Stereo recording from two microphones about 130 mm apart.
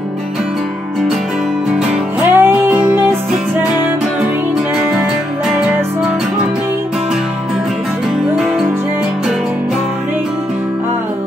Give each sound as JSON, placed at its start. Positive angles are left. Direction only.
{"t": 1.7, "sound": "music", "side_deg": -5}
{"t": 2.3, "sound": "music", "side_deg": -15}
{"t": 5.5, "sound": "music", "side_deg": -5}